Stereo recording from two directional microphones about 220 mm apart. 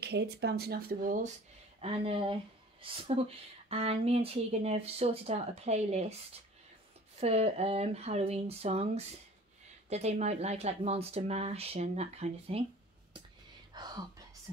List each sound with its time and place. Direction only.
0.0 s speech: 50° right (ahead or behind)
1.8 s speech: 25° right (ahead or behind)
7.2 s speech: 30° right (ahead or behind)
13.7 s speech: 20° right (ahead or behind)